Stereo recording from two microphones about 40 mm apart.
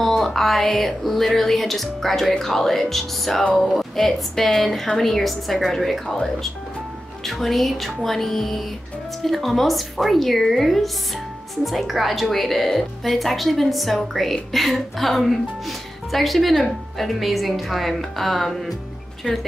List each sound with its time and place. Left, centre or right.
0.0 s a woman's voice: centre
7.2 s a woman's voice: centre
19.2 s speech: right